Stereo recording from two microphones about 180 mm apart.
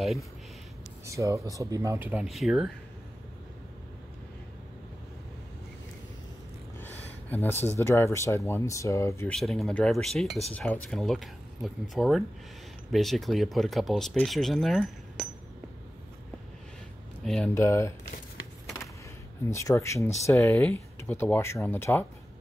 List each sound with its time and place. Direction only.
1.0 s speech: 15° right (ahead or behind)
6.8 s a sound: 10° left (ahead or behind)
7.8 s speech: 15° left (ahead or behind)
9.3 s speech: centre (ahead or behind)
17.2 s a sound: centre (ahead or behind)
17.6 s speech: 15° left (ahead or behind)
19.5 s speech: 15° left (ahead or behind)